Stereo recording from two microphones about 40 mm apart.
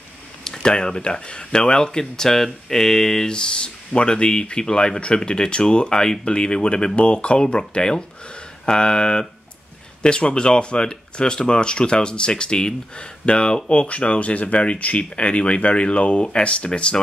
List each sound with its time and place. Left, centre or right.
0.4 s speech: centre